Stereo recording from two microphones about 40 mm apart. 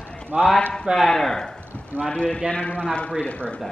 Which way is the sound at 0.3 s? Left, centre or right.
Right.